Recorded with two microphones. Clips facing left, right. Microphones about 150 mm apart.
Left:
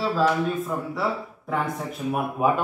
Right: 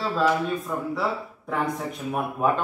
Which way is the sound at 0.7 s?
Centre (ahead or behind).